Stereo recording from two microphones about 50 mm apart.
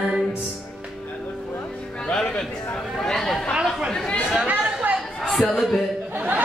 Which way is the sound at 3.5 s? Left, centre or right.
Centre.